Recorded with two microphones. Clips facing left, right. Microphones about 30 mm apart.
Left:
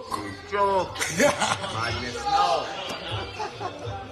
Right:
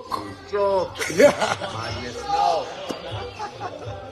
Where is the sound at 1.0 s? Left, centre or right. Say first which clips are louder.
Right 9 dB; right.